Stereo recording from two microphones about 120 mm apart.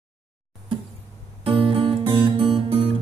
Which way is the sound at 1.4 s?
50° right (ahead or behind).